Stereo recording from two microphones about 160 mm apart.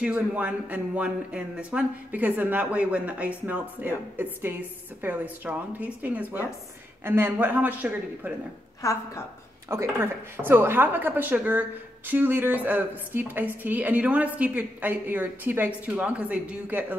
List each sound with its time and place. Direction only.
0.0 s a woman's voice: 10° right (ahead or behind)
8.8 s a woman's voice: 20° left (ahead or behind)
9.7 s a woman's voice: 15° right (ahead or behind)